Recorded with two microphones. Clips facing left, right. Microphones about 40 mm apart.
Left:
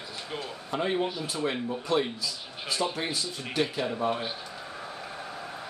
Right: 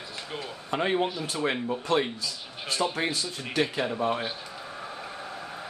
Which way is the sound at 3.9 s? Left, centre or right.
Centre.